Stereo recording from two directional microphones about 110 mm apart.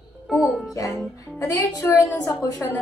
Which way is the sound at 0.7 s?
30° left (ahead or behind).